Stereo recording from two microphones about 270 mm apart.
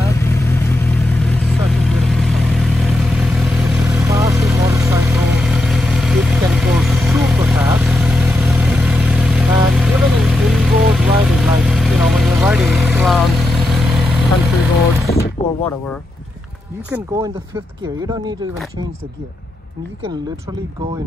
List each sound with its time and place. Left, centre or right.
0.2 s vehicle: centre
15.1 s mechanisms: left
16.9 s speech: centre